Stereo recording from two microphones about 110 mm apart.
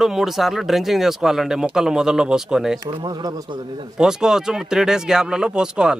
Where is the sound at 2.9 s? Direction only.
40° right (ahead or behind).